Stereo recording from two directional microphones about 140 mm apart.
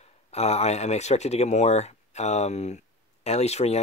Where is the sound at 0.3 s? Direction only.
50° left (ahead or behind).